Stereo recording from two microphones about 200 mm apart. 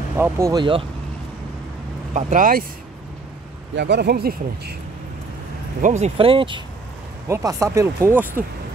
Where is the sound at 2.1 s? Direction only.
35° right (ahead or behind).